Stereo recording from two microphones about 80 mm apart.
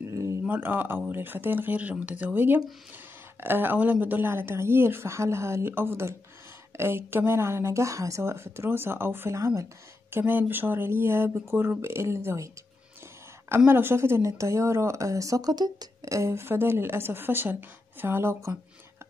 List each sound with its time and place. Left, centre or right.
0.1 s a sound: right
0.5 s a woman's voice: right
9.4 s a woman's voice: right
10.1 s speech: right
13.7 s speech: right